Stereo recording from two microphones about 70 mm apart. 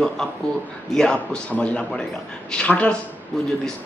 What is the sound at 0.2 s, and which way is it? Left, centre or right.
A man's voice, centre.